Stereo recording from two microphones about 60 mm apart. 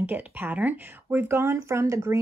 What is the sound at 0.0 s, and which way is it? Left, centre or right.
Speech, right.